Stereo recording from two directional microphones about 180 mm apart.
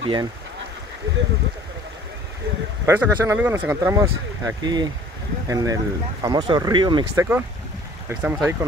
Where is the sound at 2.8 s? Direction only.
15° right (ahead or behind).